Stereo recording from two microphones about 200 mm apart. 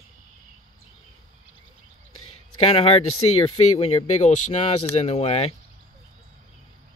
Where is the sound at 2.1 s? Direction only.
90° left.